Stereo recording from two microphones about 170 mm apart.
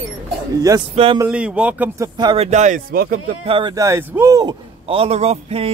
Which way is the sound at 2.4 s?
45° right (ahead or behind).